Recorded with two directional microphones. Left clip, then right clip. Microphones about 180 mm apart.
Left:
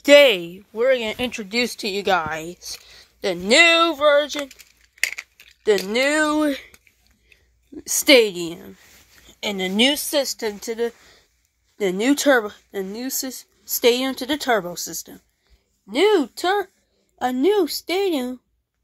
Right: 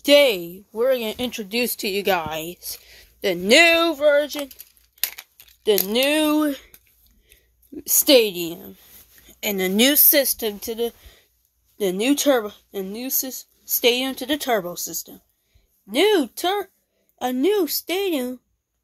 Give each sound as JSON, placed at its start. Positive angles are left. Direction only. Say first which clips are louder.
{"t": 0.0, "sound": "speech", "louder": "left 3 dB", "side_deg": 5}
{"t": 4.4, "sound": "a sound", "louder": "left 2 dB", "side_deg": 5}
{"t": 6.0, "sound": "speech", "louder": "left 1 dB", "side_deg": -15}
{"t": 6.4, "sound": "a sound", "louder": "left 2 dB", "side_deg": 5}
{"t": 7.8, "sound": "a woman's voice", "louder": "left 1 dB", "side_deg": 0}
{"t": 9.3, "sound": "a woman's voice", "louder": "right 1 dB", "side_deg": -10}
{"t": 10.2, "sound": "a woman's voice", "louder": "even", "side_deg": -5}
{"t": 11.8, "sound": "a woman's voice", "louder": "left 1 dB", "side_deg": 15}